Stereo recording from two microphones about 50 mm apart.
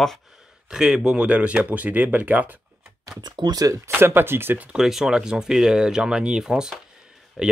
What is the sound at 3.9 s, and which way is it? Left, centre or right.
Speech, right.